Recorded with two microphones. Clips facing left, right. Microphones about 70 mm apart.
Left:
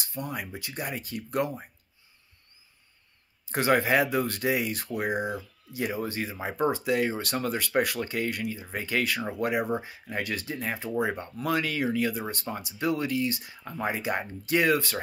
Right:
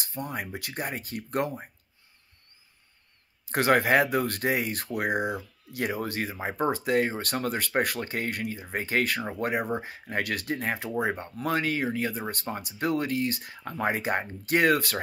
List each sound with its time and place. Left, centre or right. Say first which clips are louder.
0.0 s speech: right 1 dB; right
0.8 s speech: even; right
3.4 s speech: right 1 dB; right
4.9 s speech: right 2 dB; right
6.4 s speech: left 1 dB; right